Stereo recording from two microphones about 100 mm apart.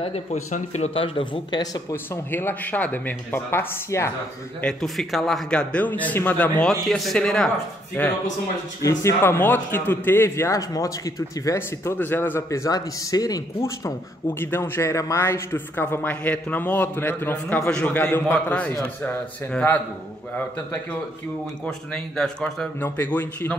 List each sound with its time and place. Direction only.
0.8 s speech: 65° left (ahead or behind)
1.6 s a man's voice: 40° left (ahead or behind)
2.3 s a man's voice: 20° left (ahead or behind)
4.8 s a man's voice: centre (ahead or behind)
6.7 s speech: centre (ahead or behind)
8.8 s a man's voice: 25° left (ahead or behind)
12.4 s a man's voice: 35° left (ahead or behind); by 19.8 s 15° left (ahead or behind)
21.6 s a man's voice: 5° left (ahead or behind)
22.8 s a man's voice: 20° left (ahead or behind)